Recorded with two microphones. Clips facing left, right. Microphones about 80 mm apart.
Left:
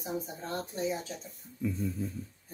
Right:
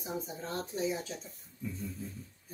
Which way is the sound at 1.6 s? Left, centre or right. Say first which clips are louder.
Left 7 dB; left.